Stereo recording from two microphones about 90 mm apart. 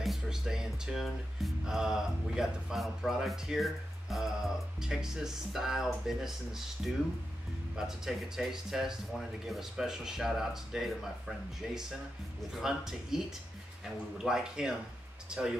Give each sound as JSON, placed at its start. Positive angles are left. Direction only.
{"t": 0.0, "sound": "speech", "side_deg": -5}